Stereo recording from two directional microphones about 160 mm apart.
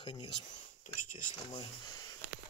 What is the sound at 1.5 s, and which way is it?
Speech, 30° left (ahead or behind).